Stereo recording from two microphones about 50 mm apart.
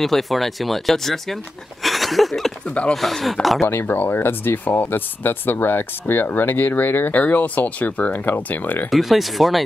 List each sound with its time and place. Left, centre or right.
0.0 s speech: centre
1.8 s a sound: centre
2.9 s speech: centre
3.6 s speech: left
8.9 s speech: centre